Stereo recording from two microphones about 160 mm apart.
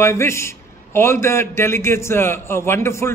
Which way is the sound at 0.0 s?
15° left (ahead or behind).